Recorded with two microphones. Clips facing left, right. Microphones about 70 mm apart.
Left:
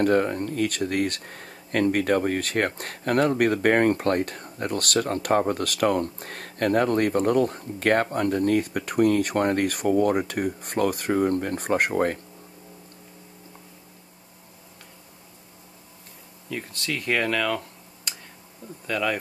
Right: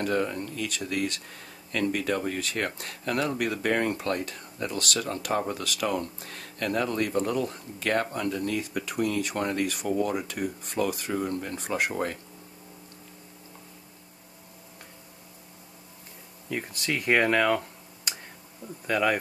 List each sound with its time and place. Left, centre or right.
0.0 s speech: left
16.4 s speech: centre
18.9 s speech: centre